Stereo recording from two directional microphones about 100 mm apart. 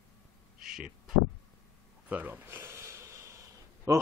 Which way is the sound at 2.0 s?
15° right (ahead or behind).